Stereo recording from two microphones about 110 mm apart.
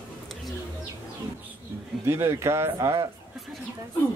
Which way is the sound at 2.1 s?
25° right (ahead or behind).